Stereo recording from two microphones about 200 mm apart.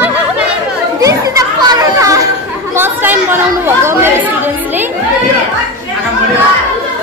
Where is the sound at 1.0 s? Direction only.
20° right (ahead or behind).